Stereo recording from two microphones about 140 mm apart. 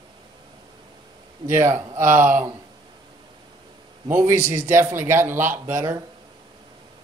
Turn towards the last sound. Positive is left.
turn(degrees=-20)  # may be behind; listen again after turning